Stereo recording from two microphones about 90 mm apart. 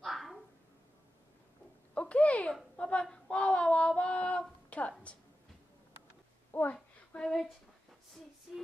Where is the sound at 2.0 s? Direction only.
15° left (ahead or behind).